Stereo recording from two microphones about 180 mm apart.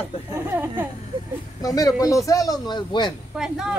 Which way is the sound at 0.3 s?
10° right (ahead or behind).